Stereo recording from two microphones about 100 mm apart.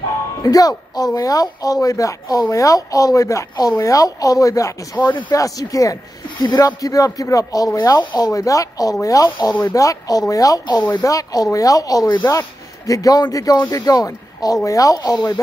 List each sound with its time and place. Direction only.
0.4 s speech: 35° left (ahead or behind)
8.0 s speech: 50° left (ahead or behind)
8.3 s speech: 35° left (ahead or behind)